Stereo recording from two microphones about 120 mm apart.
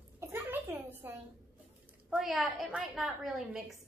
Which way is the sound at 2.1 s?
5° right (ahead or behind).